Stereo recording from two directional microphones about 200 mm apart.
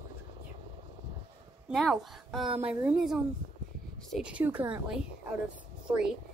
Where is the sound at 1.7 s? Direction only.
Centre (ahead or behind).